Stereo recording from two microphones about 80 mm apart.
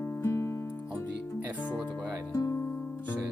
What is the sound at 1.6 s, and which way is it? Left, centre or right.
Music, left.